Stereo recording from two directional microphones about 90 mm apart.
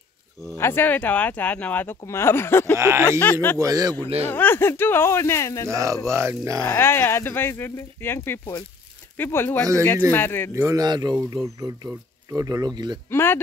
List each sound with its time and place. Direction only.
0.5 s speech: 25° left (ahead or behind)
2.7 s speech: 30° right (ahead or behind)
3.1 s speech: 20° left (ahead or behind)
3.5 s a sound: 40° right (ahead or behind)
4.3 s speech: 20° left (ahead or behind)
5.7 s a sound: 35° right (ahead or behind)
6.6 s speech: 25° left (ahead or behind)
10.5 s a sound: 35° right (ahead or behind)
10.8 s speech: 50° right (ahead or behind)
11.4 s a sound: 40° right (ahead or behind)
12.3 s speech: 40° right (ahead or behind)
13.1 s speech: 25° left (ahead or behind)